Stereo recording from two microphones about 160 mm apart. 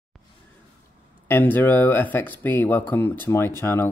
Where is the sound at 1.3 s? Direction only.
10° left (ahead or behind).